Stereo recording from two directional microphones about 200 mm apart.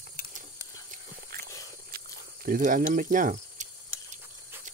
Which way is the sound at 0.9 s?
50° right (ahead or behind).